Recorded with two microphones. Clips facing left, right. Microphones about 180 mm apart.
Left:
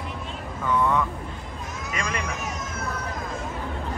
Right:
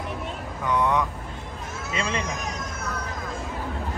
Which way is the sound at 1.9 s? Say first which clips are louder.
Right 2 dB; 25° right (ahead or behind).